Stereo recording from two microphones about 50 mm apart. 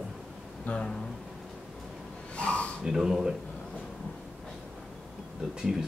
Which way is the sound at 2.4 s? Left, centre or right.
Left.